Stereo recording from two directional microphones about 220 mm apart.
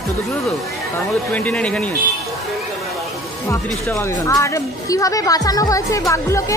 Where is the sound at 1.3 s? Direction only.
5° left (ahead or behind).